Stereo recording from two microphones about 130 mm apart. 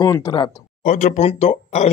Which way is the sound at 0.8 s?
80° left.